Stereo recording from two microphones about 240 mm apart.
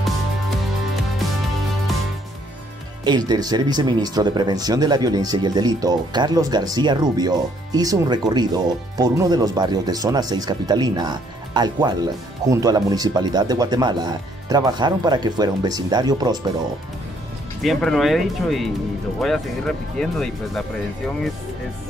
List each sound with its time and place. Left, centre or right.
3.0 s speech: centre
17.6 s speech: centre